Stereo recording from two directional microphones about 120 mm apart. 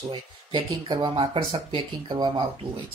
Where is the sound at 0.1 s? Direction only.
40° right (ahead or behind).